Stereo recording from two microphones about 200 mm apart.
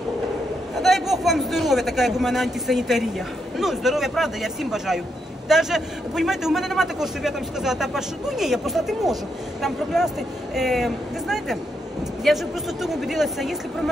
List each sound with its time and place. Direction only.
0.7 s a man's voice: centre (ahead or behind)